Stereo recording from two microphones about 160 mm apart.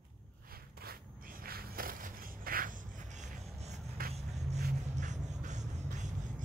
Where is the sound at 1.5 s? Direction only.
65° right (ahead or behind).